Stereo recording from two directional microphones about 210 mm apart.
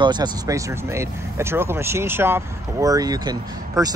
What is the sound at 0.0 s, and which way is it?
Speech, 20° right (ahead or behind).